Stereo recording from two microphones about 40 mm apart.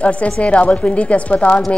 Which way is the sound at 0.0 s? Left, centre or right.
Left.